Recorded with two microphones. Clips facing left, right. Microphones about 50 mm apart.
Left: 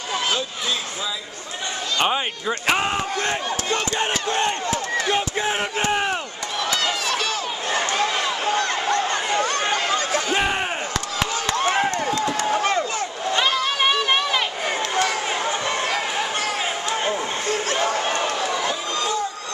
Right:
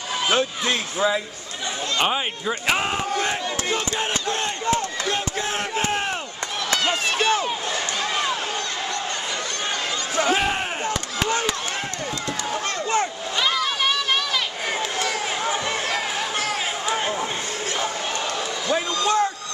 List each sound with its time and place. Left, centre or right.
0.4 s speech: right
2.0 s a man's voice: centre
4.0 s battle cry: centre
6.9 s a sound: right
8.5 s chatter: left
12.3 s chop: centre
13.4 s run: left
15.0 s a sound: centre
18.7 s a sound: right